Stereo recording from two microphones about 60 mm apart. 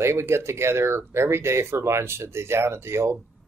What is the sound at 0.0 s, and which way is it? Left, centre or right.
Speech, right.